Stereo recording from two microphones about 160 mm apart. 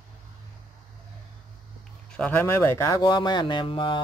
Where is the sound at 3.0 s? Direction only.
25° left (ahead or behind).